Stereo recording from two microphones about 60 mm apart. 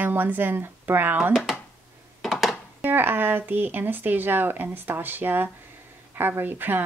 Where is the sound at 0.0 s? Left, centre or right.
Right.